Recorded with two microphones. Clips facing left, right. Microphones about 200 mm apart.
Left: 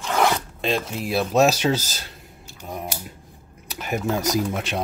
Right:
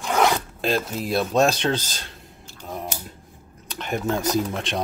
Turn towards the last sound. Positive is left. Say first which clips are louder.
# even
turn(degrees=5)  # may be behind; listen again after turning